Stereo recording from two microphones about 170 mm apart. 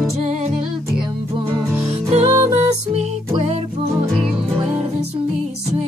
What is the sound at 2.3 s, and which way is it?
Music, 15° right (ahead or behind).